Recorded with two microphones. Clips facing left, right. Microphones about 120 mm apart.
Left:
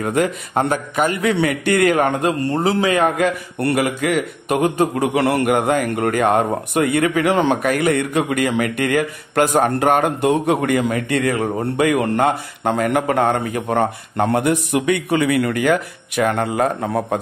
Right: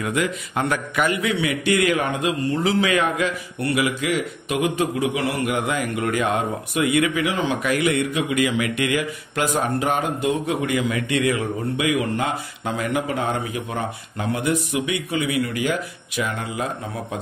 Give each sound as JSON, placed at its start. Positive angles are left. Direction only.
{"t": 0.0, "sound": "a man's voice", "side_deg": 45}